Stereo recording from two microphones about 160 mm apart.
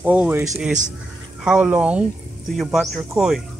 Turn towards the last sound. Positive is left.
turn(degrees=0)  # may be behind; listen again after turning